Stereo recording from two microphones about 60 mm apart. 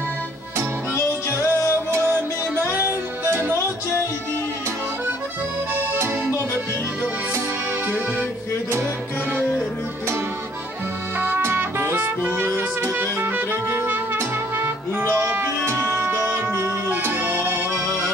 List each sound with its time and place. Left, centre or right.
1.4 s music: left
1.9 s music: right
11.1 s music: right
11.4 s music: right